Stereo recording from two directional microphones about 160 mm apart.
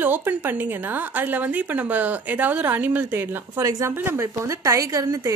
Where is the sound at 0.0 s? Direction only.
10° right (ahead or behind).